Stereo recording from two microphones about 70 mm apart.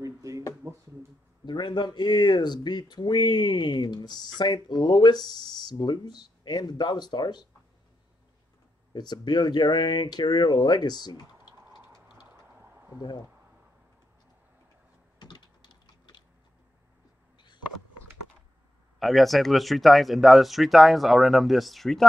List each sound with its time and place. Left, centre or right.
0.0 s drawer open or close: right
0.6 s a sound: right
1.4 s speech: left
8.9 s speech: left
12.5 s a sound: right
12.9 s speech: left
15.1 s typing: left
18.9 s speech: centre